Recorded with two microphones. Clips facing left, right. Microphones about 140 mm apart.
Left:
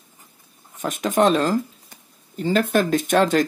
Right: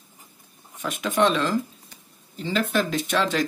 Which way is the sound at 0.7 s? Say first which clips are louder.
Left 3 dB; 45° left (ahead or behind).